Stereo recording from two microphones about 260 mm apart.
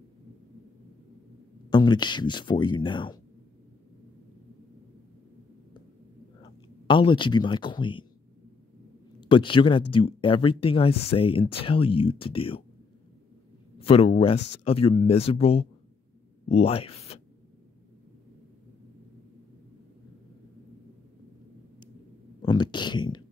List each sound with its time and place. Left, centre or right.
1.7 s speech: centre
6.4 s speech: centre
9.2 s speech: centre
13.7 s speech: left
22.4 s a sound: centre